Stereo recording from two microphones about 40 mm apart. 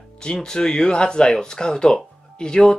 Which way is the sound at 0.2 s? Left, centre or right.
Left.